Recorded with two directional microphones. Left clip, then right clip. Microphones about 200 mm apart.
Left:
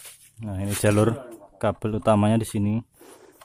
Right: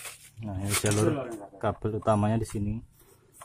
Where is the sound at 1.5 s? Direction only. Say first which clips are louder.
Left 5 dB; 30° left (ahead or behind).